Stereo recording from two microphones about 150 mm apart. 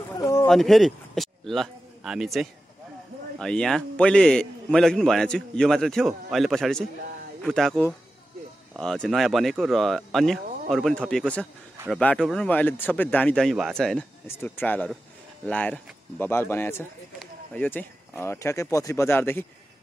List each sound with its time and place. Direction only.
0.2 s a sound: 20° left (ahead or behind)
0.5 s a man's voice: centre (ahead or behind)
14.2 s speech: 15° left (ahead or behind)